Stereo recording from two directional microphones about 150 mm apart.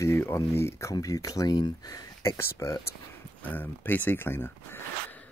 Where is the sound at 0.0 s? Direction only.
15° left (ahead or behind).